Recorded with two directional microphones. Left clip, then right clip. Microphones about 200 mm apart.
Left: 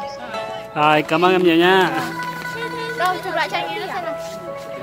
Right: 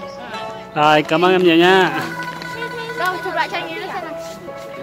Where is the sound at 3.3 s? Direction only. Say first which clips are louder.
Even; 25° left (ahead or behind); by 4.1 s 40° left (ahead or behind).